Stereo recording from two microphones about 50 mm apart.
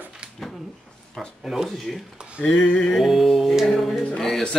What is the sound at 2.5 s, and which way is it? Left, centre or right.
Speech, centre.